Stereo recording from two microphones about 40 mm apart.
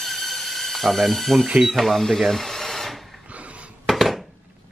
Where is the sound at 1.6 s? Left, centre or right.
Centre.